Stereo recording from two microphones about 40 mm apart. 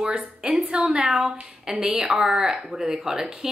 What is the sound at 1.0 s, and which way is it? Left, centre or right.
Speech, centre.